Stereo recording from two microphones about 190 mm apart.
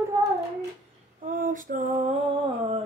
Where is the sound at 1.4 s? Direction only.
45° right (ahead or behind).